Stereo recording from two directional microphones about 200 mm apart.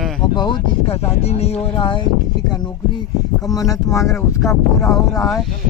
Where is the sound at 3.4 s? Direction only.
15° left (ahead or behind).